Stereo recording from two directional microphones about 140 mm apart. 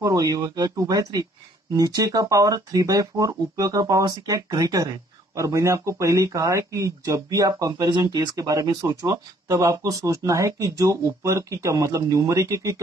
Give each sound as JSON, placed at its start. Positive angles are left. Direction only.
{"t": 0.0, "sound": "speech", "side_deg": -25}